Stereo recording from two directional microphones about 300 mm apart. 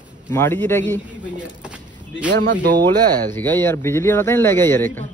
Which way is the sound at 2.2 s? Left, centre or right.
Right.